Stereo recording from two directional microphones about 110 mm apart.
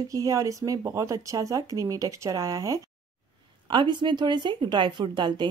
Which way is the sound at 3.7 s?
45° right (ahead or behind).